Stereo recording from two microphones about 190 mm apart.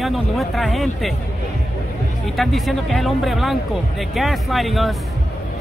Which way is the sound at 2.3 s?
Centre (ahead or behind).